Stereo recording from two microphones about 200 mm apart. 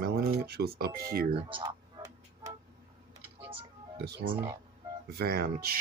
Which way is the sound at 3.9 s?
55° right (ahead or behind).